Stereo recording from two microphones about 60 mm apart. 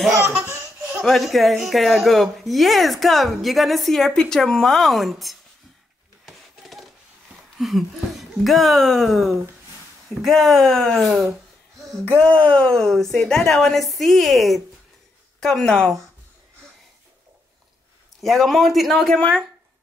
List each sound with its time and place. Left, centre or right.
1.0 s speech: centre
6.2 s a sound: centre
7.5 s speech: centre
12.2 s speech: left
12.7 s speech: centre
15.4 s speech: centre
18.2 s speech: centre
19.0 s speech: centre